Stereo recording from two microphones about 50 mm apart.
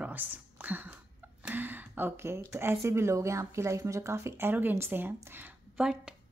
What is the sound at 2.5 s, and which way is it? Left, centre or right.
A woman's voice, right.